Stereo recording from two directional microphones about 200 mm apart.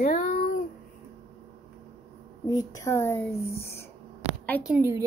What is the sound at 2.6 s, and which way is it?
Speech, 15° left (ahead or behind).